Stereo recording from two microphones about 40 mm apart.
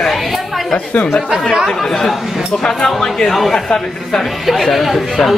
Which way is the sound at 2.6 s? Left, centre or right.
Centre.